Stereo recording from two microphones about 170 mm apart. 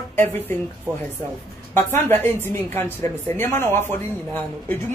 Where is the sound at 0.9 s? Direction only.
20° right (ahead or behind).